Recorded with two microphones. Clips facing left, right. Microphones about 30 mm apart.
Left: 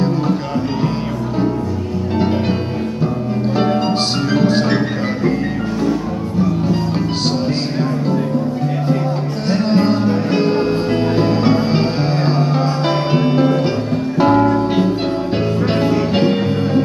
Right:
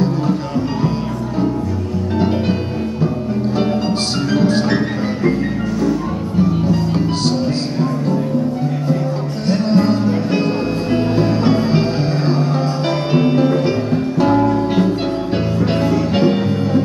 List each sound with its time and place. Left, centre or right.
4.3 s music: centre
6.7 s music: centre
9.5 s music: centre
13.1 s music: centre
15.6 s music: centre